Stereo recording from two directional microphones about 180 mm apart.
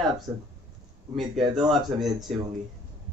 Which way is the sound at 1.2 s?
Centre (ahead or behind).